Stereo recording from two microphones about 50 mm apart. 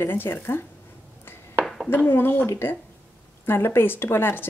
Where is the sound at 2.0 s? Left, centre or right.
Left.